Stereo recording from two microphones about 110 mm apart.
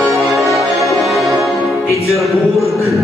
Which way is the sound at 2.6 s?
30° left (ahead or behind).